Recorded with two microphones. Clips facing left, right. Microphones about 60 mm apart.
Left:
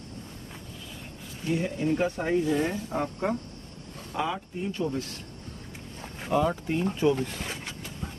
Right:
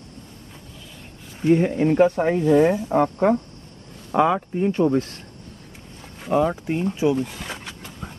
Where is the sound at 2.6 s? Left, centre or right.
Right.